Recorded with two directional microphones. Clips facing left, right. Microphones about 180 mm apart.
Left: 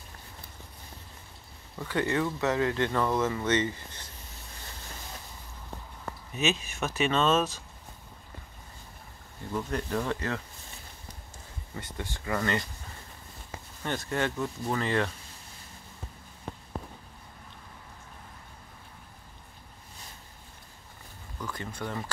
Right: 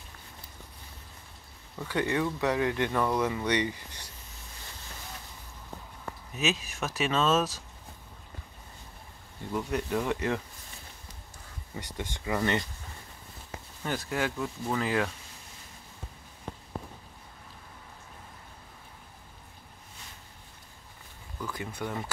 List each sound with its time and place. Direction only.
1.9 s speech: 15° right (ahead or behind)
6.3 s speech: centre (ahead or behind)
9.5 s speech: 10° right (ahead or behind)
11.7 s speech: 20° right (ahead or behind)
13.8 s speech: 5° right (ahead or behind)
21.4 s speech: 5° right (ahead or behind)